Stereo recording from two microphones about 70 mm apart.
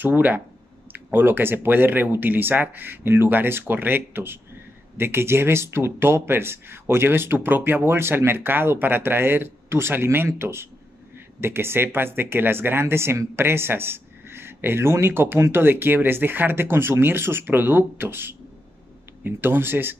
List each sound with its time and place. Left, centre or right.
0.0 s speech: right